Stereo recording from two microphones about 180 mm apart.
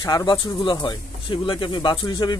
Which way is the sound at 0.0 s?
20° left (ahead or behind).